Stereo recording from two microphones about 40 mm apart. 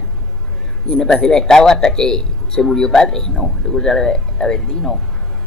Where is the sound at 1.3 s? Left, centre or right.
Centre.